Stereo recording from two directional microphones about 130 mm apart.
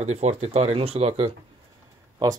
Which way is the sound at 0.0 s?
55° right (ahead or behind).